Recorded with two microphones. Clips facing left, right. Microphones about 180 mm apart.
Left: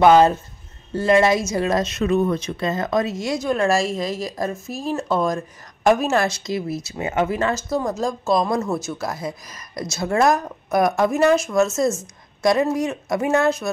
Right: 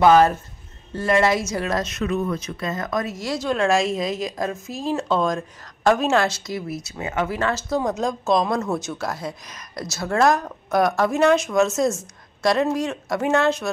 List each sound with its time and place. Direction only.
0.0 s speech: 20° left (ahead or behind)
7.8 s a woman's voice: centre (ahead or behind)